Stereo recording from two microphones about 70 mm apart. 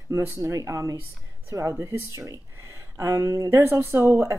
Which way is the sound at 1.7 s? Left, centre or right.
Right.